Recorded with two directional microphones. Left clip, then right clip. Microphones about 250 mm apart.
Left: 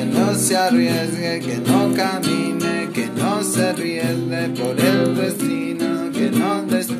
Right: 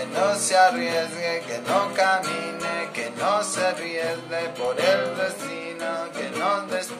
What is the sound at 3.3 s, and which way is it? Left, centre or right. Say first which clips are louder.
Music: left 1 dB; left.